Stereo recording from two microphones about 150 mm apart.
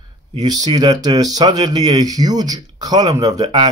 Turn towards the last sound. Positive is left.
turn(degrees=-30)  # may be behind; listen again after turning